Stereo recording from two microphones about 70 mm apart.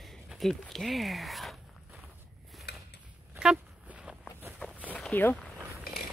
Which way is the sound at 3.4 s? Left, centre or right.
Centre.